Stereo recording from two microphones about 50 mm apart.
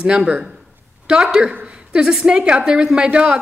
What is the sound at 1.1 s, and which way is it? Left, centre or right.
A woman's voice, centre.